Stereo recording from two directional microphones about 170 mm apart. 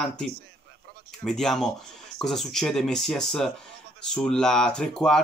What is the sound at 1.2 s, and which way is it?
Speech, 5° left (ahead or behind).